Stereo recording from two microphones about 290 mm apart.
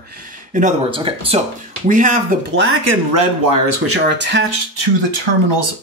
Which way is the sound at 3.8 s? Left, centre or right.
Right.